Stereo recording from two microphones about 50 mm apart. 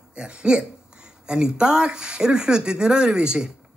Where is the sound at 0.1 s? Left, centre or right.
Right.